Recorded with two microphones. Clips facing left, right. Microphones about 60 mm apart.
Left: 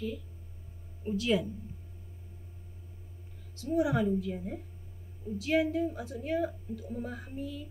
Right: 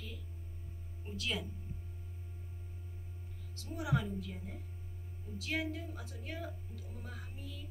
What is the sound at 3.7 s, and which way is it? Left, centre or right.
Speech, centre.